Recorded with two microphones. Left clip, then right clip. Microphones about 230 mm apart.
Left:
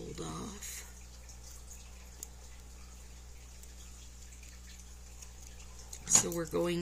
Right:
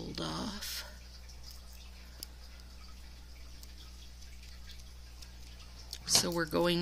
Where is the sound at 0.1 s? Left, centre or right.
Right.